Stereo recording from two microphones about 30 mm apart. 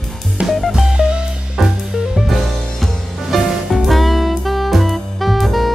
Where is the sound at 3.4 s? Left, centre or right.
Centre.